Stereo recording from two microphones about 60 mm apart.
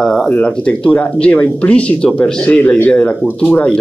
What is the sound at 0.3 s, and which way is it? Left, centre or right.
Speech, left.